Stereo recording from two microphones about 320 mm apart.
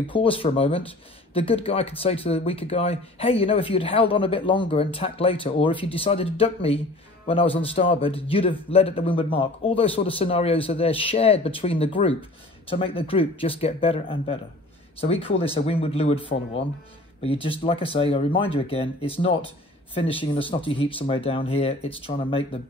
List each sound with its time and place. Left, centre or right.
0.1 s speech: centre
17.2 s speech: centre